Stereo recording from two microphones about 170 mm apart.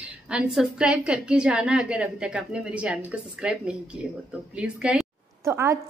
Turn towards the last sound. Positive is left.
turn(degrees=-15)  # may be behind; listen again after turning